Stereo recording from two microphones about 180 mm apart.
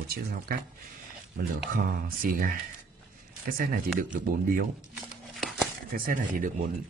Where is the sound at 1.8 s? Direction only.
55° right (ahead or behind).